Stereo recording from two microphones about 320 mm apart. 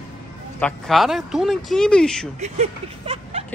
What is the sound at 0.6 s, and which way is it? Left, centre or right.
Speech, centre.